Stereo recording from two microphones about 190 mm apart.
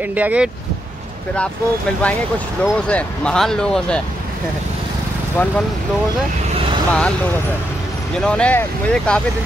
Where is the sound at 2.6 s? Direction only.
5° left (ahead or behind).